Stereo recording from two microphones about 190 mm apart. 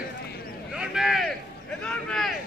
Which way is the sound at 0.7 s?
5° right (ahead or behind).